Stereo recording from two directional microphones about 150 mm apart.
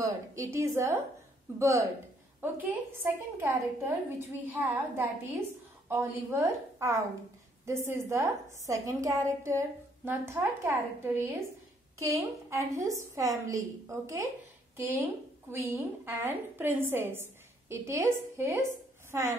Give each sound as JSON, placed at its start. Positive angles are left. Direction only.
{"t": 0.0, "sound": "a woman's voice", "side_deg": -20}
{"t": 15.6, "sound": "a woman's voice", "side_deg": -20}